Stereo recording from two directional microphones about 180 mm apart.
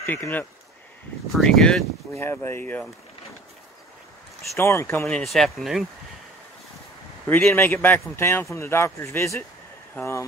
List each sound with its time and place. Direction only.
0.0 s a man's voice: 10° left (ahead or behind)
2.1 s a man's voice: 15° left (ahead or behind)
4.6 s a man's voice: 15° left (ahead or behind)
5.0 s speech: centre (ahead or behind)
7.2 s a man's voice: 5° left (ahead or behind)